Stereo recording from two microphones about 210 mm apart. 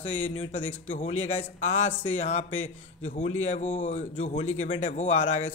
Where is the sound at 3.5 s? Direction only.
35° left (ahead or behind).